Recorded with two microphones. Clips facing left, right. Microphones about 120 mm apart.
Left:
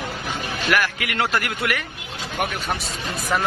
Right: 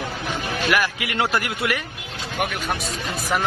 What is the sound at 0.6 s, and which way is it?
Speech, 20° right (ahead or behind).